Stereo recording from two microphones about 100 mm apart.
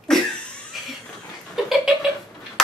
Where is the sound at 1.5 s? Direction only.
Centre (ahead or behind).